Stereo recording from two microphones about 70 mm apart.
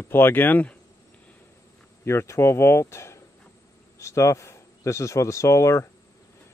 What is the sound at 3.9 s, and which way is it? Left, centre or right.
A man's voice, left.